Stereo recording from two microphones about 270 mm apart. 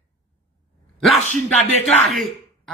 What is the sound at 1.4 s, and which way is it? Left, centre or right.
Speech, right.